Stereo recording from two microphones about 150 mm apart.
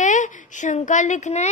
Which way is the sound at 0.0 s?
55° left (ahead or behind).